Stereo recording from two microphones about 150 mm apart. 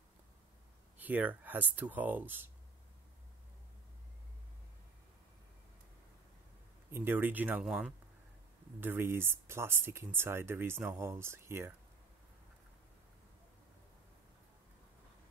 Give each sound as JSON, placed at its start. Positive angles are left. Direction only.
{"t": 0.9, "sound": "speech", "side_deg": -10}
{"t": 6.9, "sound": "speech", "side_deg": -15}
{"t": 8.8, "sound": "speech", "side_deg": -15}